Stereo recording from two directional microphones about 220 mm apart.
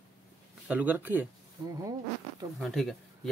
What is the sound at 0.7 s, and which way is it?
Speech, 5° right (ahead or behind).